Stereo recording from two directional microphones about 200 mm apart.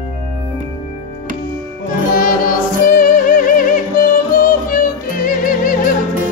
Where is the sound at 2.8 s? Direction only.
45° left (ahead or behind).